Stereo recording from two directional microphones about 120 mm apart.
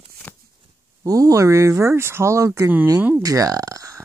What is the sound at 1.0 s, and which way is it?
Speech, 30° right (ahead or behind).